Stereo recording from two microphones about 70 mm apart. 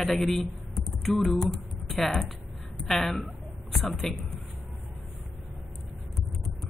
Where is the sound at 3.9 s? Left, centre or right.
Centre.